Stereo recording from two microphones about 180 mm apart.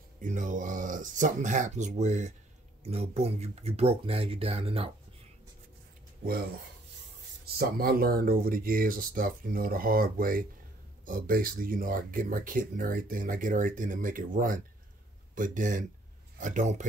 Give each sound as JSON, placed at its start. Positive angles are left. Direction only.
{"t": 0.2, "sound": "speech", "side_deg": -45}
{"t": 7.4, "sound": "speech", "side_deg": -55}